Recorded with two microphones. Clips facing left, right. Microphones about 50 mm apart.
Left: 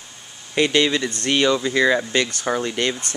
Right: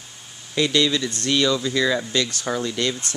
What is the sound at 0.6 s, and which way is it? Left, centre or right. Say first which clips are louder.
Speech: left 2 dB; left.